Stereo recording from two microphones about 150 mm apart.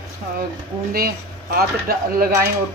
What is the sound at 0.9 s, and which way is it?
Speech, 90° right.